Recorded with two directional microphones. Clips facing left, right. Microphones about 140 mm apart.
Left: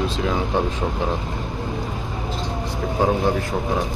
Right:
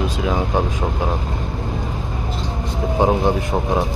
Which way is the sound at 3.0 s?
20° right (ahead or behind).